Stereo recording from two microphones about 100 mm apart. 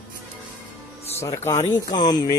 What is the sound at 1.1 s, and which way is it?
Speech, 30° left (ahead or behind).